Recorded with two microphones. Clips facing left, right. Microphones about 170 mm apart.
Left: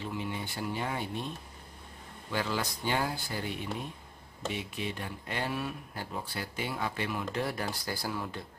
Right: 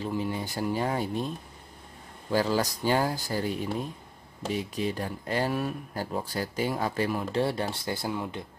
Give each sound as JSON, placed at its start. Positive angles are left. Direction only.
{"t": 0.0, "sound": "speech", "side_deg": -40}
{"t": 2.3, "sound": "speech", "side_deg": -40}